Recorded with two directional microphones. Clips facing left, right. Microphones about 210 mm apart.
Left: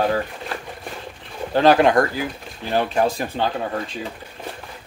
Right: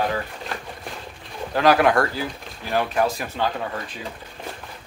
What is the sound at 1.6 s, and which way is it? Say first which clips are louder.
Speech: left 3 dB; 25° left (ahead or behind).